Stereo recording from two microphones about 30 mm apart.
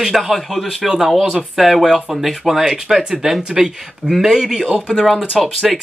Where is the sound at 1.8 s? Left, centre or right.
Centre.